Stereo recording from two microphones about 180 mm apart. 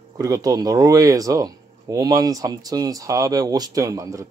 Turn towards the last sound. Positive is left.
turn(degrees=-15)  # may be behind; listen again after turning